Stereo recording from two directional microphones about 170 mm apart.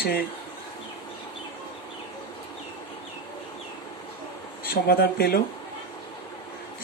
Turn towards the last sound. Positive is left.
turn(degrees=65)  # may be behind; listen again after turning